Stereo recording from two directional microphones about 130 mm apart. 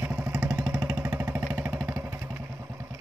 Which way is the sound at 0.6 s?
20° right (ahead or behind).